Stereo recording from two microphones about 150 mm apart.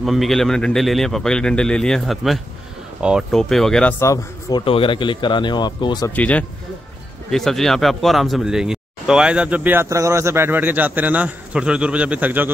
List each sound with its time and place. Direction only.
0.0 s a man's voice: centre (ahead or behind)
4.0 s a man's voice: 25° left (ahead or behind)
6.0 s speech: 10° left (ahead or behind); by 12.4 s 10° right (ahead or behind)